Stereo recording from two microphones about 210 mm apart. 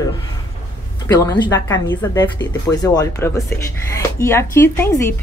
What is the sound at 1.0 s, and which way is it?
Speech, 20° left (ahead or behind).